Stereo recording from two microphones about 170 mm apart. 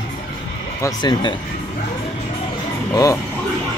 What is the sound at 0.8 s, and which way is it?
Speech, 25° left (ahead or behind).